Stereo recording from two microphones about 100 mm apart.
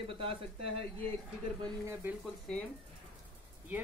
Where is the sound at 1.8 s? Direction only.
30° right (ahead or behind).